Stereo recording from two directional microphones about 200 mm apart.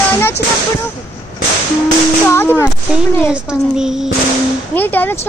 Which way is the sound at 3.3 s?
5° right (ahead or behind).